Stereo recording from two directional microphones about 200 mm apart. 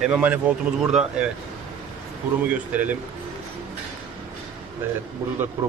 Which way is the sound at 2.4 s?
10° right (ahead or behind).